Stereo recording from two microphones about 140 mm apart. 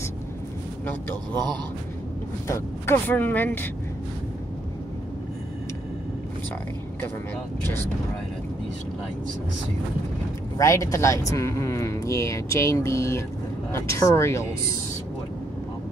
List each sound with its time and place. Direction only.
0.8 s speech: 15° left (ahead or behind)
2.4 s speech: 20° left (ahead or behind)
10.6 s speech: 20° left (ahead or behind)